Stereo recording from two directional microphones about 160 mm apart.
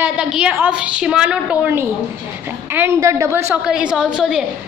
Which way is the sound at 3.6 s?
5° right (ahead or behind).